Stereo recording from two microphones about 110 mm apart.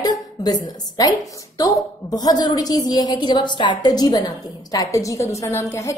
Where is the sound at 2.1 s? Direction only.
35° left (ahead or behind).